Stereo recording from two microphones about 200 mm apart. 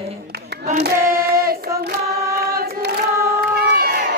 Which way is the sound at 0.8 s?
45° right (ahead or behind).